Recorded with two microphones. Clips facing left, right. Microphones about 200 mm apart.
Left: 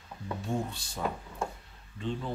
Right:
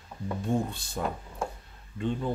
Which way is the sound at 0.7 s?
55° right (ahead or behind).